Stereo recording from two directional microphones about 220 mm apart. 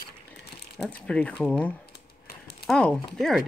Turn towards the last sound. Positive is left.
turn(degrees=0)  # may be behind; listen again after turning